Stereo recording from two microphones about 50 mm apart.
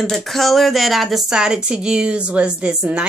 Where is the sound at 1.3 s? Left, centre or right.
Centre.